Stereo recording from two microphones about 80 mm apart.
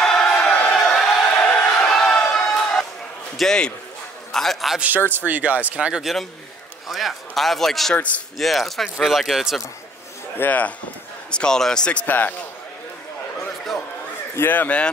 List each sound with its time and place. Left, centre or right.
0.0 s a sound: centre
3.3 s a man's voice: centre
4.7 s speech: right
6.9 s speech: centre
10.3 s a man's voice: left
11.2 s speech: centre
14.3 s a man's voice: left